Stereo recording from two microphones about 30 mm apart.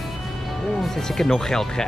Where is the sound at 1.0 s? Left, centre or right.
Centre.